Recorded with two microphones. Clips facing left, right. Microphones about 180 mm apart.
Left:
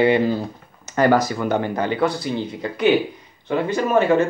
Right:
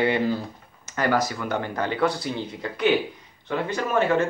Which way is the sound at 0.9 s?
40° left (ahead or behind).